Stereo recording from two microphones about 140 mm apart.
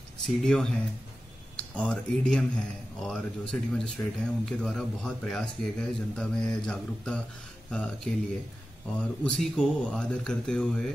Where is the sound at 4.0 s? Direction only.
25° left (ahead or behind).